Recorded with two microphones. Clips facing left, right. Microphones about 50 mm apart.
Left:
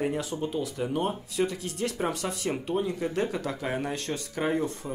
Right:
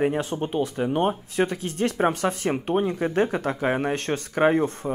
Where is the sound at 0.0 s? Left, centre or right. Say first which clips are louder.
Right 5 dB; right.